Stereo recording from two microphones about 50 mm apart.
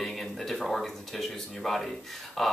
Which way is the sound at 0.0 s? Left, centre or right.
Centre.